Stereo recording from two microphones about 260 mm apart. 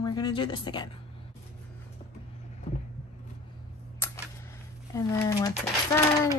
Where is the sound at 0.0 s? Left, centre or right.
Centre.